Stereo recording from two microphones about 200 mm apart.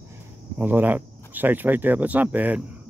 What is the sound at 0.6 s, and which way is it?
Speech, 10° right (ahead or behind).